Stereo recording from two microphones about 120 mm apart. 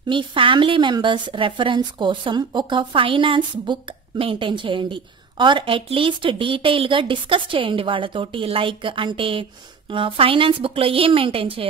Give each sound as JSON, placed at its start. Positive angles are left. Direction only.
{"t": 0.1, "sound": "a woman's voice", "side_deg": -45}